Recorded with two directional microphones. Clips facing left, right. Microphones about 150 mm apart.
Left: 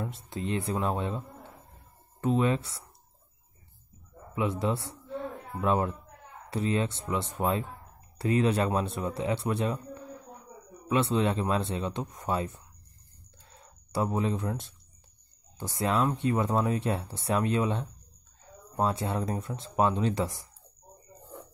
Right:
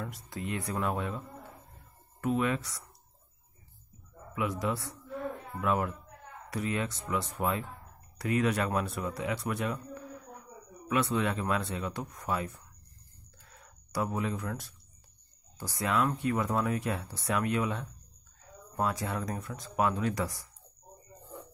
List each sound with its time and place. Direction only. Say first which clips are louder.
0.0 s speech: left 4 dB; 25° left (ahead or behind)
2.2 s speech: left 3 dB; 30° left (ahead or behind)
4.4 s a man's voice: left 3 dB; 25° left (ahead or behind)
13.5 s a sound: left 4 dB; 25° left (ahead or behind)
15.5 s speech: left 2 dB; 25° left (ahead or behind)